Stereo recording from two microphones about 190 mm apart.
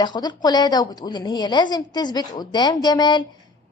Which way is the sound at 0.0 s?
20° left (ahead or behind).